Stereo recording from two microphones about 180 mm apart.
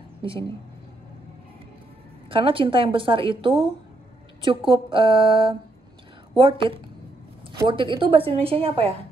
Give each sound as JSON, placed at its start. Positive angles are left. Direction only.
{"t": 0.2, "sound": "speech", "side_deg": -30}
{"t": 2.2, "sound": "a woman's voice", "side_deg": -30}